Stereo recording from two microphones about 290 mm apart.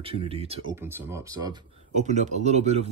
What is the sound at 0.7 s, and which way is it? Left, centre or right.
Speech, centre.